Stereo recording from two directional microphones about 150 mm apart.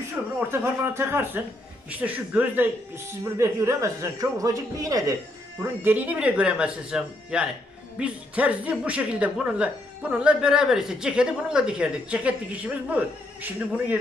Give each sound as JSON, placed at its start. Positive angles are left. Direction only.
{"t": 0.2, "sound": "a woman's voice", "side_deg": -10}
{"t": 5.6, "sound": "a woman's voice", "side_deg": -10}